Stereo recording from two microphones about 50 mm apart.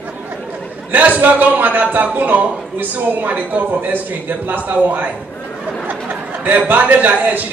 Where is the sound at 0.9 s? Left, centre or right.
Right.